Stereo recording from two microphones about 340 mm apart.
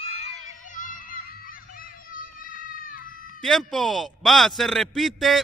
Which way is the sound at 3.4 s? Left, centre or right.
Centre.